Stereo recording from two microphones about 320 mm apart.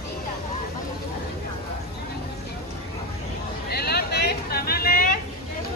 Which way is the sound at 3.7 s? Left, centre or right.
Left.